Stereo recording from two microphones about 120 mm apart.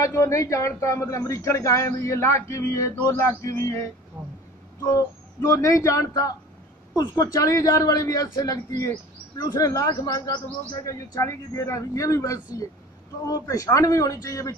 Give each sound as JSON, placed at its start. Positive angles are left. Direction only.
{"t": 0.0, "sound": "speech", "side_deg": 25}
{"t": 4.2, "sound": "speech", "side_deg": -20}
{"t": 4.8, "sound": "speech", "side_deg": 30}